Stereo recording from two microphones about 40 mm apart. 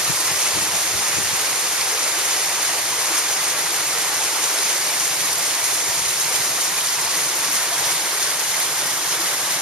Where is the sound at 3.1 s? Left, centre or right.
Right.